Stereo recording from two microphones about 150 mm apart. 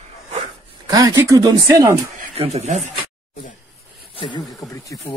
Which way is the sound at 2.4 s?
45° right (ahead or behind).